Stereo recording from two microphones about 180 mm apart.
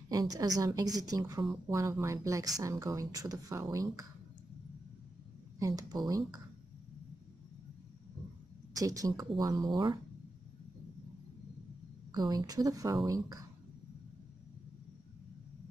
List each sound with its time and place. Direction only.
0.1 s speech: 20° right (ahead or behind)
5.6 s speech: 20° right (ahead or behind)
8.7 s speech: 20° right (ahead or behind)
12.1 s speech: 20° right (ahead or behind)